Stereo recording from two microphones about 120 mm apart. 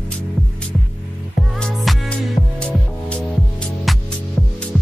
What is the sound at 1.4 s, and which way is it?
Music, 5° left (ahead or behind).